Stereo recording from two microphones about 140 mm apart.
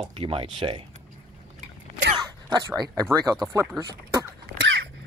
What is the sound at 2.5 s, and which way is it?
Speech, 25° right (ahead or behind).